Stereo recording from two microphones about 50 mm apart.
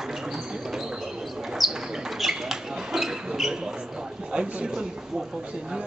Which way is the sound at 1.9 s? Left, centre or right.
Centre.